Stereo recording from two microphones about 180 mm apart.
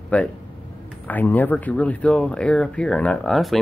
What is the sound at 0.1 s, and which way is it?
Speech, 10° left (ahead or behind).